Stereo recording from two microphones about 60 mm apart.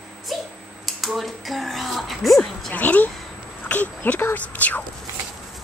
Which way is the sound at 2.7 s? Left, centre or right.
Left.